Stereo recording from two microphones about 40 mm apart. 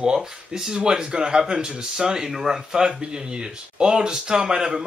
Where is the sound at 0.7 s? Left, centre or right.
Right.